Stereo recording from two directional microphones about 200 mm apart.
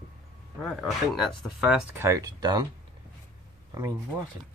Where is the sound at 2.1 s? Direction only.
15° right (ahead or behind).